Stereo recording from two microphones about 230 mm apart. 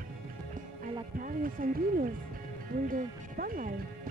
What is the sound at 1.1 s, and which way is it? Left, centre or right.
Speech, right.